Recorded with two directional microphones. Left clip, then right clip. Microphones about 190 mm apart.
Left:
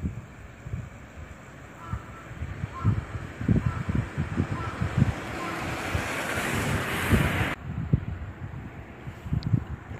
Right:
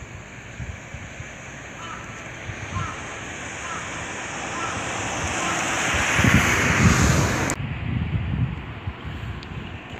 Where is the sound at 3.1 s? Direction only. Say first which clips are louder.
Right 1 dB; 45° left (ahead or behind).